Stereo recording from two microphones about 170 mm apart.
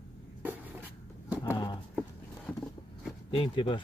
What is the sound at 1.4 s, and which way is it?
Clip-clop, 25° left (ahead or behind).